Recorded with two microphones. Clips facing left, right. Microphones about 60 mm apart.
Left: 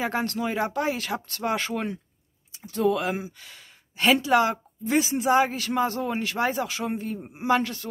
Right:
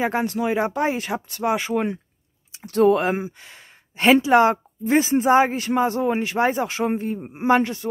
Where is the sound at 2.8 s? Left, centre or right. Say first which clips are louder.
Right 7 dB; right.